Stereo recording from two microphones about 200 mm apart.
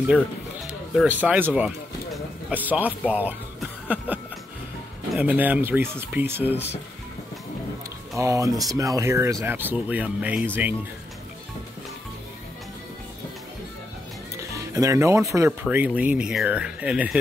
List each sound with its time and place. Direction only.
0.7 s speech: 5° right (ahead or behind)
3.8 s a sound: 5° right (ahead or behind)
5.1 s speech: 5° right (ahead or behind)
8.2 s speech: 15° right (ahead or behind)
14.3 s music: 15° right (ahead or behind)
15.7 s speech: 10° right (ahead or behind)